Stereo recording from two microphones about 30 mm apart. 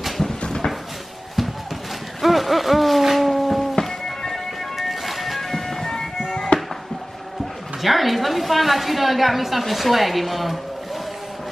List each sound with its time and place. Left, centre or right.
0.4 s a sound: left
2.2 s a sound: centre
3.3 s music: centre
4.7 s music: centre
5.4 s music: centre
7.8 s a woman's voice: centre